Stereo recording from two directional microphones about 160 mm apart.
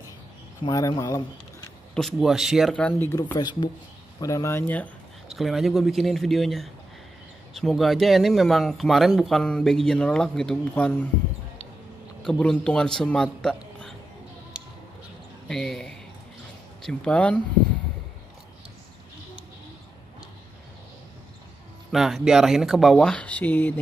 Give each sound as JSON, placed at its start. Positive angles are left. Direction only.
{"t": 0.7, "sound": "speech", "side_deg": 20}
{"t": 2.0, "sound": "speech", "side_deg": 0}
{"t": 5.3, "sound": "speech", "side_deg": 0}
{"t": 12.3, "sound": "speech", "side_deg": 5}
{"t": 15.4, "sound": "speech", "side_deg": 5}
{"t": 21.9, "sound": "speech", "side_deg": 0}